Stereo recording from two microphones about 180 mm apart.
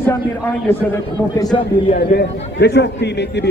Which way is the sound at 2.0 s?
60° left (ahead or behind).